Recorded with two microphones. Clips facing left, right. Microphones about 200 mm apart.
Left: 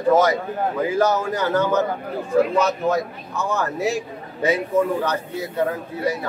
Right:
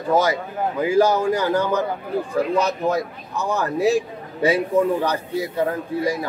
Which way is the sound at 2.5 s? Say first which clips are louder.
Left 1 dB; 35° right (ahead or behind).